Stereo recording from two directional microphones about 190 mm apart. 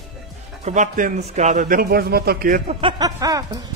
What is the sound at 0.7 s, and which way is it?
A man's voice, 45° right (ahead or behind).